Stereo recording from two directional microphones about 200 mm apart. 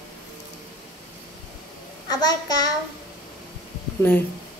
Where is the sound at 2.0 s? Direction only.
20° left (ahead or behind).